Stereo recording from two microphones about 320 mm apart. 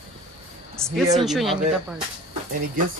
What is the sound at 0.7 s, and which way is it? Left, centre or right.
Speech, centre.